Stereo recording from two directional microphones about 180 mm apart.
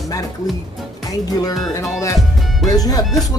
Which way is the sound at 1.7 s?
15° left (ahead or behind).